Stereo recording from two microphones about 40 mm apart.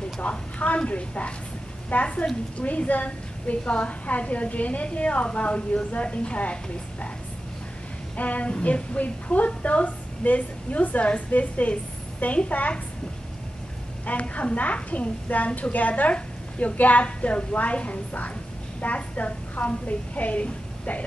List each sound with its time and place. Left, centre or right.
0.2 s a woman's voice: left
8.2 s a woman's voice: left
14.3 s a woman's voice: left